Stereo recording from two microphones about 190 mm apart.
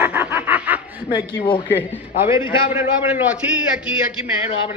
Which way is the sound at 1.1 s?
20° left (ahead or behind).